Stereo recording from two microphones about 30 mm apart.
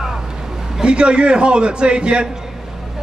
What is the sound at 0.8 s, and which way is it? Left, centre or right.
A man's voice, right.